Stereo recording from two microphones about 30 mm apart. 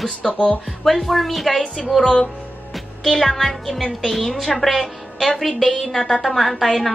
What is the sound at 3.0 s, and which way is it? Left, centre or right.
A woman's voice, centre.